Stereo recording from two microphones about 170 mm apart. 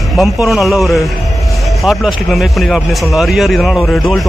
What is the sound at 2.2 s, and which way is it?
A man's voice, centre (ahead or behind).